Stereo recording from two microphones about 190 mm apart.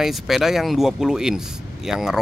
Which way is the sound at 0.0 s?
Centre (ahead or behind).